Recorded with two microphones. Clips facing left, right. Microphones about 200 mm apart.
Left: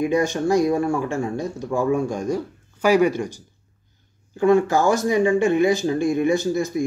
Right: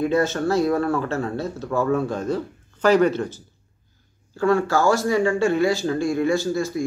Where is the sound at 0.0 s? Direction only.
15° left (ahead or behind).